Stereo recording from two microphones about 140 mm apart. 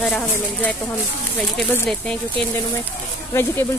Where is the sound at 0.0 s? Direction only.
10° left (ahead or behind).